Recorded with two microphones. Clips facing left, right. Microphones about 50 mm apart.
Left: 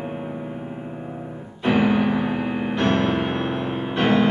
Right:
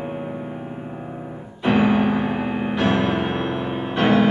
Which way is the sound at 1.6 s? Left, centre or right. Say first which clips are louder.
Right 1 dB; centre.